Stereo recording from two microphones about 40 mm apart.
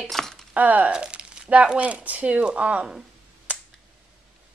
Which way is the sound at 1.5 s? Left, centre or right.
Right.